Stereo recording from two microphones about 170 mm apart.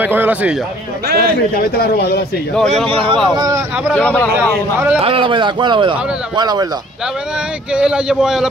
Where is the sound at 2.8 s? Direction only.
35° right (ahead or behind).